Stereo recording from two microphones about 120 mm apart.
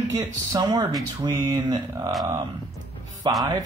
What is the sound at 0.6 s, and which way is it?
Speech, 35° right (ahead or behind).